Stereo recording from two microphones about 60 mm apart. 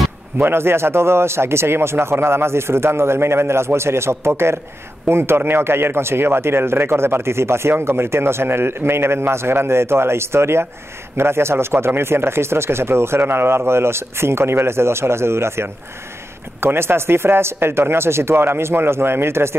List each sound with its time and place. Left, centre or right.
0.4 s speech: right